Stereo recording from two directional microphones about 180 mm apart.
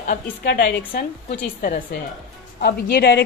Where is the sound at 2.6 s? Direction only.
60° left (ahead or behind).